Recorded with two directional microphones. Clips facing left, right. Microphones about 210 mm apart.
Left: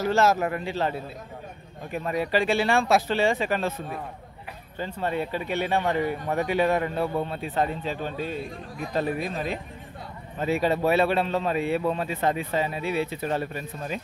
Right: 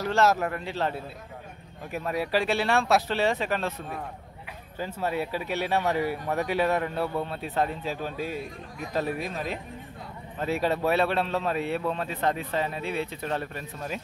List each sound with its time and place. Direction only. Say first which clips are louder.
0.0 s a man's voice: left 2 dB; centre (ahead or behind)